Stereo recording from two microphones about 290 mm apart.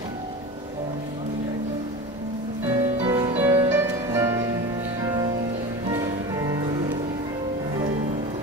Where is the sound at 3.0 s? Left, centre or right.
Centre.